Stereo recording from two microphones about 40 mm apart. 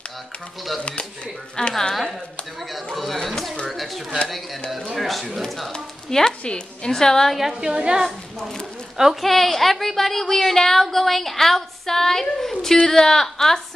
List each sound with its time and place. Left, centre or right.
0.8 s speech: left
1.7 s a woman's voice: centre
6.4 s a woman's voice: left
6.9 s a woman's voice: centre
7.5 s a woman's voice: centre
9.2 s a woman's voice: centre